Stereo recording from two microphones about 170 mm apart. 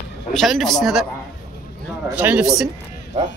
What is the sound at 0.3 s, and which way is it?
Speech, centre (ahead or behind).